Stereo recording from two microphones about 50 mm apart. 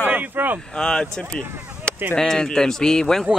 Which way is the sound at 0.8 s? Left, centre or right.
Centre.